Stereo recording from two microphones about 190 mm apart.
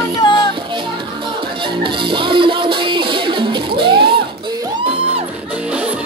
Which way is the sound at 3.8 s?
25° right (ahead or behind).